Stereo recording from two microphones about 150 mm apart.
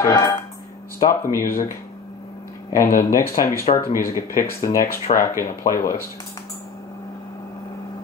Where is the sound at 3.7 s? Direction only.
45° left (ahead or behind).